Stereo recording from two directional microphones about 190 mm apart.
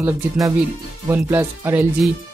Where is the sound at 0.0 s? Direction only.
10° right (ahead or behind).